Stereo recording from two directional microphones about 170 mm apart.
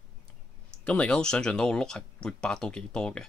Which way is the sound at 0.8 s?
5° left (ahead or behind).